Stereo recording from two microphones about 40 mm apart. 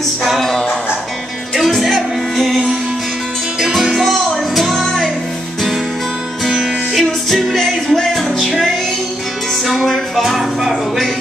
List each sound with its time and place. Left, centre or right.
0.2 s music: centre
6.4 s music: centre